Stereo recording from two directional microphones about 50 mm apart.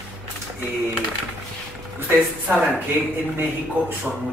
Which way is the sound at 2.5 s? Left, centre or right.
Right.